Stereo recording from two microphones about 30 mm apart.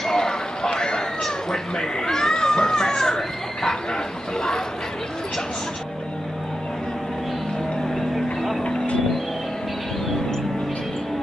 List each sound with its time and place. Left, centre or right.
0.0 s a sound: centre
1.2 s speech: centre
7.9 s vehicle: centre